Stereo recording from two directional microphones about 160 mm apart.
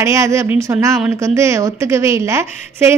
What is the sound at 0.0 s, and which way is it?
A woman's voice, 20° right (ahead or behind).